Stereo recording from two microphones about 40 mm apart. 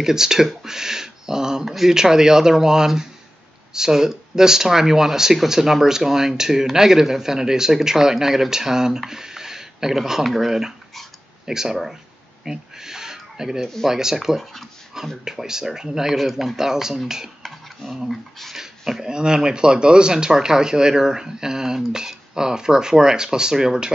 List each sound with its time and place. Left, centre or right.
0.0 s speech: centre
12.4 s a sound: centre
13.8 s speech: centre
16.2 s speech: centre
17.9 s speech: centre
18.6 s speech: centre